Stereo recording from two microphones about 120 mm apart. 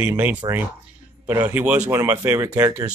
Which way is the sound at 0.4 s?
30° right (ahead or behind).